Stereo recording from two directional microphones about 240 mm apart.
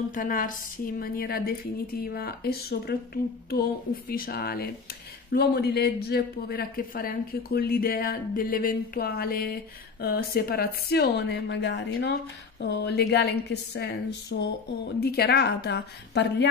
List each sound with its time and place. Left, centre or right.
0.1 s a man's voice: left